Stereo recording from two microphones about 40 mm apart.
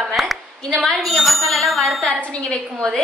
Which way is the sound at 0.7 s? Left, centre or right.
Centre.